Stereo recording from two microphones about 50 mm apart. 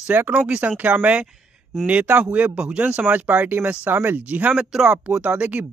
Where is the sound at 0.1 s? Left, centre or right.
Right.